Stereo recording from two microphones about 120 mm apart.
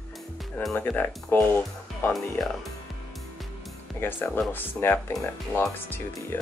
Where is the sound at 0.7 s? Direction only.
15° left (ahead or behind).